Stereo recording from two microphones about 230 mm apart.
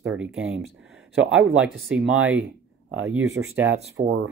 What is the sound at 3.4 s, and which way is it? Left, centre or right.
Speech, right.